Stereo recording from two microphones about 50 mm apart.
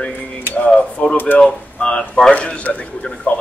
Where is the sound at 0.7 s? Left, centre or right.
Left.